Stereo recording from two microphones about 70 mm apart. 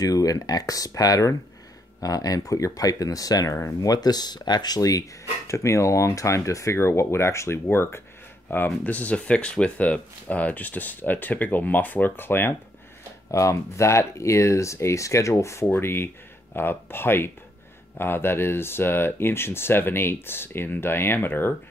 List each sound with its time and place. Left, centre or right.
0.0 s speech: left
3.5 s speech: left
3.9 s speech: left
5.5 s speech: left
13.3 s speech: left